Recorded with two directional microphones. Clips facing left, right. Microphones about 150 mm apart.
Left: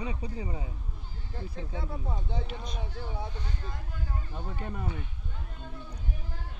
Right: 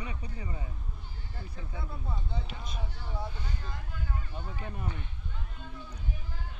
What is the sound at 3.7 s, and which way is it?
Speech, 40° left (ahead or behind).